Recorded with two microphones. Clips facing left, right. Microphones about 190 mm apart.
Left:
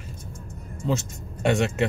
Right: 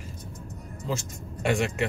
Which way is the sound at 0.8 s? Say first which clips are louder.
Left 6 dB; 25° left (ahead or behind).